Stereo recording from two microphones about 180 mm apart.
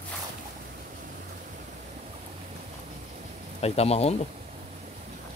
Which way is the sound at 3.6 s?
35° left (ahead or behind).